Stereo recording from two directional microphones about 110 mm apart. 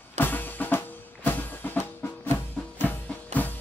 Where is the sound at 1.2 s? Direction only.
15° left (ahead or behind).